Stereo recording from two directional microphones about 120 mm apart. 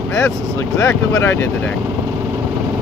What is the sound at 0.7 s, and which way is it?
Speech, 25° left (ahead or behind).